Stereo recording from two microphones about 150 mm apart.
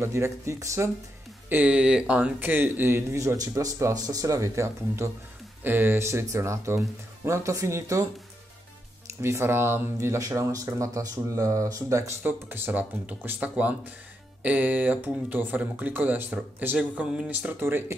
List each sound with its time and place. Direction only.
0.0 s speech: 20° right (ahead or behind)
1.5 s a man's voice: 10° right (ahead or behind)
9.2 s a man's voice: 15° right (ahead or behind)